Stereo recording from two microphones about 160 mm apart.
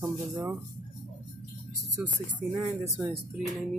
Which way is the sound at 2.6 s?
20° right (ahead or behind).